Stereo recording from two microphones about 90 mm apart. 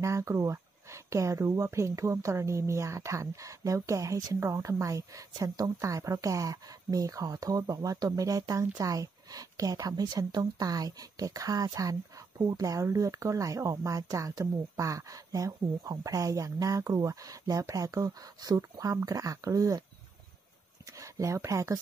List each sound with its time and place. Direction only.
0.0 s speech: 35° right (ahead or behind)
20.8 s speech: 35° right (ahead or behind)